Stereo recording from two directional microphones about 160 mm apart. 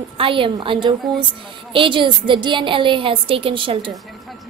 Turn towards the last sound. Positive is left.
turn(degrees=-30)  # may be behind; listen again after turning